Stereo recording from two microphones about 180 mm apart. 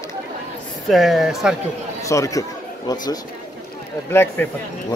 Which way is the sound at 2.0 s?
15° left (ahead or behind).